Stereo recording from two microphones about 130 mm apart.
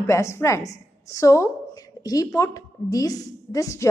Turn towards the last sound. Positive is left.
turn(degrees=25)  # may be behind; listen again after turning